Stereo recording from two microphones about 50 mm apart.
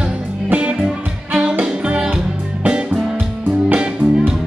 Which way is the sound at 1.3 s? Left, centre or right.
Right.